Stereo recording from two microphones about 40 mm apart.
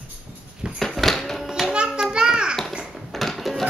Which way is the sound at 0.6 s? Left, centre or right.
Right.